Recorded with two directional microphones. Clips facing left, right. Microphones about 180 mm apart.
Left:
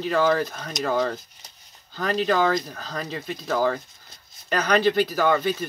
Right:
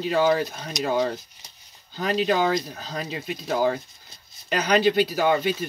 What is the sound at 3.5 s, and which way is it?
Speech, 20° right (ahead or behind).